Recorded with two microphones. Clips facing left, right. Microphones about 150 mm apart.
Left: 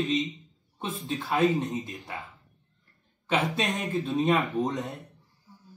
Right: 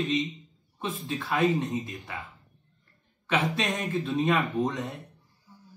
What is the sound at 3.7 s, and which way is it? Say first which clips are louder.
Speech: even; centre (ahead or behind).